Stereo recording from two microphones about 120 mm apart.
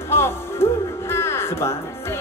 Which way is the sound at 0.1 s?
20° left (ahead or behind).